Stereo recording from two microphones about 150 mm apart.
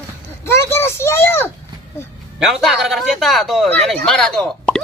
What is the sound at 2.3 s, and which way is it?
A man's voice, centre (ahead or behind).